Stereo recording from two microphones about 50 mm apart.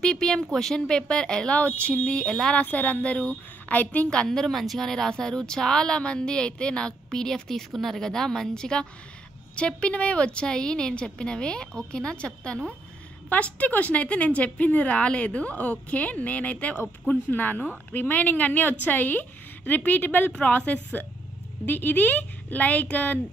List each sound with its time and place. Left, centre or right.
0.0 s speech: centre
1.5 s a woman's voice: left
2.5 s a woman's voice: left
4.3 s a woman's voice: centre
13.3 s a woman's voice: left